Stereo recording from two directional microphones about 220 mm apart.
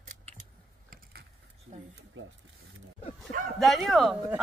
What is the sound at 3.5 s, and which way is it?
Speech, centre (ahead or behind).